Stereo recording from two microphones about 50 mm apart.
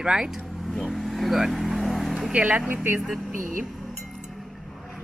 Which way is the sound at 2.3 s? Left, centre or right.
Right.